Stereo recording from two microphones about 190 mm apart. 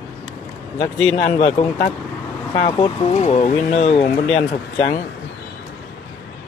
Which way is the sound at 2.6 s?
25° left (ahead or behind).